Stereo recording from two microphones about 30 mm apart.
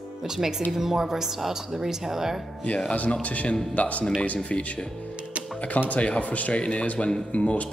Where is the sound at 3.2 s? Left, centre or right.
Left.